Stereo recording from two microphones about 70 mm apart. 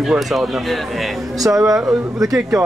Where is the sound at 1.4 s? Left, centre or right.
Right.